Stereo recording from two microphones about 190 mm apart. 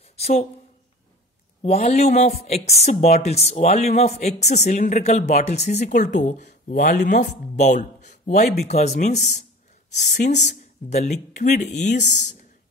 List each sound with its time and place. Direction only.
0.1 s speech: 35° left (ahead or behind)
1.6 s speech: 35° left (ahead or behind)